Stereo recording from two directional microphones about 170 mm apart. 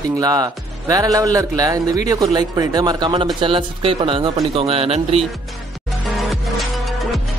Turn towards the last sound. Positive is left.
turn(degrees=0)  # may be behind; listen again after turning